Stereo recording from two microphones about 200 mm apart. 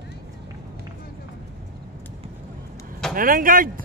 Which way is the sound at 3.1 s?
45° right (ahead or behind).